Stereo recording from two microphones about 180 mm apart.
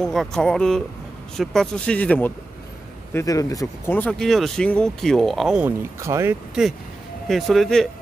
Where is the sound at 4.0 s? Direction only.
5° left (ahead or behind); by 6.4 s 15° right (ahead or behind).